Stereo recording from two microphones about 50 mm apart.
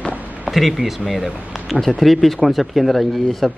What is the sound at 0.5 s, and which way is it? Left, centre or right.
Speech, centre.